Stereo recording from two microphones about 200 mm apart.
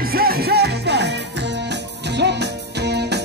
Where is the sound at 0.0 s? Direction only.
50° right (ahead or behind).